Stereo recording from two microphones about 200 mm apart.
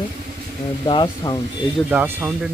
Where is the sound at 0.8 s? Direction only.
25° left (ahead or behind).